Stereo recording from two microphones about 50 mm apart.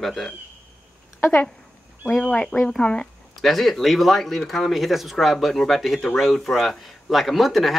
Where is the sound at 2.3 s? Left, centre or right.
Left.